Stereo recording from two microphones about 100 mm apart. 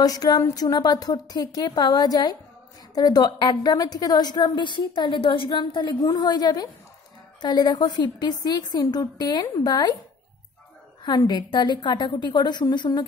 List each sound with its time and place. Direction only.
0.0 s a woman's voice: 40° left (ahead or behind)
11.0 s a woman's voice: 45° left (ahead or behind)